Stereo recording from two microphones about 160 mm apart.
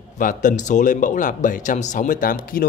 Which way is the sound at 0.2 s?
55° left (ahead or behind).